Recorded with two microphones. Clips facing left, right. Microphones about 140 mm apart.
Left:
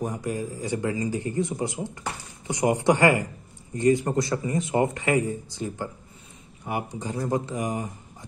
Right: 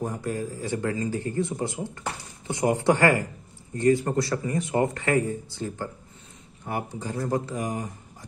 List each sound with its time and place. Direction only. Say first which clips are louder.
0.0 s speech: even; 15° left (ahead or behind)